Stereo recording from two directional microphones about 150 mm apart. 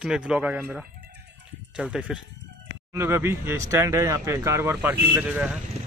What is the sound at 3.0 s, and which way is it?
Speech, 15° right (ahead or behind).